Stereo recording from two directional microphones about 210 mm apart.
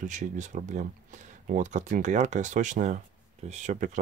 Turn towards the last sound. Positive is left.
turn(degrees=-35)  # may be behind; listen again after turning